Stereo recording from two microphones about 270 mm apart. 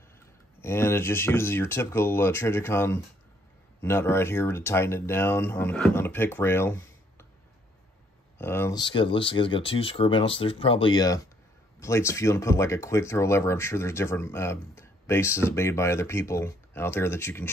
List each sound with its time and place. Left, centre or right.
0.6 s speech: centre
8.4 s speech: centre